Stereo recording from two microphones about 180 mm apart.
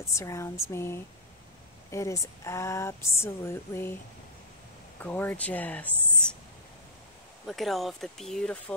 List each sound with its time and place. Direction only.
0.0 s speech: 15° left (ahead or behind)
5.0 s speech: 10° left (ahead or behind)
7.4 s speech: centre (ahead or behind)